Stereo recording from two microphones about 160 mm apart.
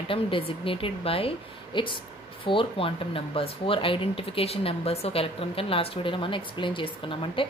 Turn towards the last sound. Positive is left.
turn(degrees=30)  # may be behind; listen again after turning